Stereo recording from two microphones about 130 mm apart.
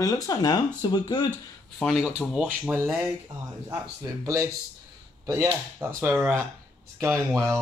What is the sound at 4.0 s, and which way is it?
Speech, 25° right (ahead or behind).